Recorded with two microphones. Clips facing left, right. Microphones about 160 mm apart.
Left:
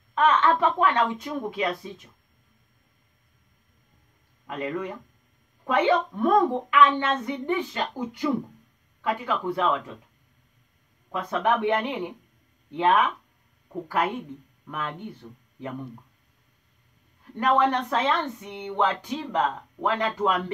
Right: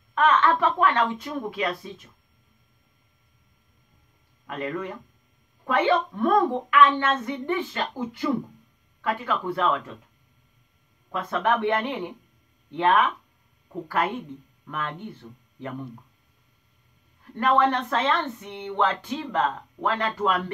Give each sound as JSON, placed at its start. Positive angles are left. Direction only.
{"t": 0.1, "sound": "speech", "side_deg": 20}
{"t": 4.5, "sound": "speech", "side_deg": 15}
{"t": 11.1, "sound": "speech", "side_deg": 15}
{"t": 17.4, "sound": "speech", "side_deg": 15}